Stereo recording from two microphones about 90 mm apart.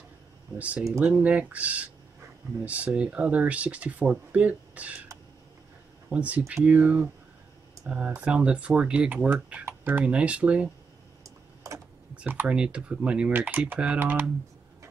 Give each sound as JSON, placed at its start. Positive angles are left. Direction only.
{"t": 0.6, "sound": "speech", "side_deg": -15}
{"t": 0.8, "sound": "speech", "side_deg": -30}
{"t": 1.1, "sound": "speech", "side_deg": -15}
{"t": 6.1, "sound": "speech", "side_deg": -15}
{"t": 11.2, "sound": "a sound", "side_deg": -35}
{"t": 12.2, "sound": "speech", "side_deg": -15}